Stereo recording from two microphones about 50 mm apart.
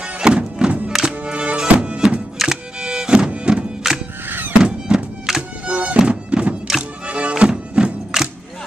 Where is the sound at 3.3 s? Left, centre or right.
Right.